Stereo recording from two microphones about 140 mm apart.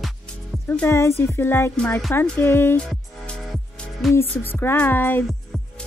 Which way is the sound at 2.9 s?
Centre (ahead or behind).